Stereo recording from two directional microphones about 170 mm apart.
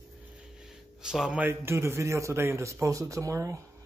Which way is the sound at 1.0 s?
5° right (ahead or behind).